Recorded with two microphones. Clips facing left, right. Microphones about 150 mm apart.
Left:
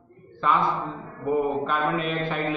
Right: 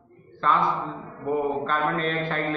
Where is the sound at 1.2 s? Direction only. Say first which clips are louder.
Left 1 dB; 5° left (ahead or behind).